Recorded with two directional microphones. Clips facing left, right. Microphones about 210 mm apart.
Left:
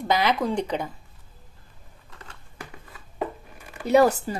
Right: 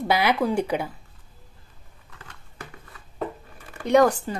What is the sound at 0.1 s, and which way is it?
Speech, 10° right (ahead or behind).